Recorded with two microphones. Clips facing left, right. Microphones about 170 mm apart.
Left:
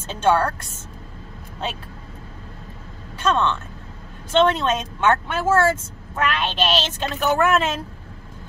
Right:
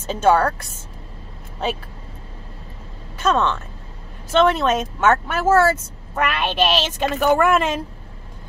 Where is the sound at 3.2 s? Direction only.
5° right (ahead or behind).